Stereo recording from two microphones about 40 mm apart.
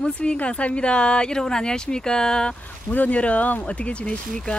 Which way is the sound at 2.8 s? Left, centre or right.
Left.